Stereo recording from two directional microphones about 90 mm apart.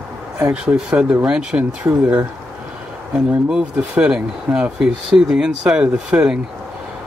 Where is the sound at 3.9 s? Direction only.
15° right (ahead or behind).